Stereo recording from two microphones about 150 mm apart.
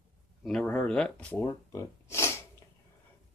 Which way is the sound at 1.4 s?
20° left (ahead or behind).